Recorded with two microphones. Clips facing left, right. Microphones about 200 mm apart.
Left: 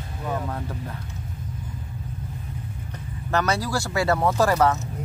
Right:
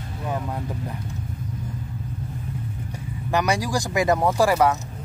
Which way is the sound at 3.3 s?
15° right (ahead or behind).